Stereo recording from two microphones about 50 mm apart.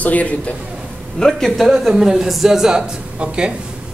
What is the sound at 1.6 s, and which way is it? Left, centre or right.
A man's voice, centre.